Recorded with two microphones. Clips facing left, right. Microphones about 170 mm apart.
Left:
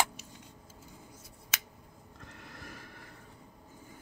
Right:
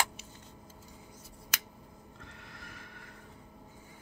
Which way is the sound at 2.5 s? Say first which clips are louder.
Left 2 dB; 40° left (ahead or behind).